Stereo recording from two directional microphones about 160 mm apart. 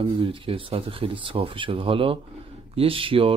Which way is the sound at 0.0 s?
35° right (ahead or behind).